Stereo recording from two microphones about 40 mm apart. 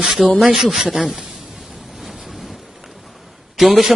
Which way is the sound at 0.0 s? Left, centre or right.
Centre.